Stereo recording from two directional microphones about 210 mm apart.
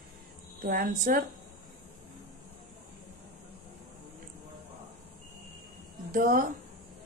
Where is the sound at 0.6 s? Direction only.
45° right (ahead or behind).